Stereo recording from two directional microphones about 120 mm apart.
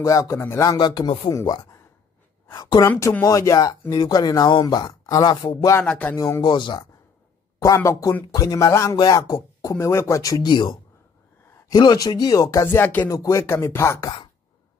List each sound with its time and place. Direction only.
0.0 s speech: 25° left (ahead or behind)
0.7 s speech: 40° left (ahead or behind)
2.9 s a sound: 15° left (ahead or behind)
3.3 s speech: 30° left (ahead or behind)
5.8 s a sound: 15° left (ahead or behind)
6.1 s speech: 30° left (ahead or behind)
7.5 s speech: 25° left (ahead or behind)
13.1 s speech: 25° left (ahead or behind)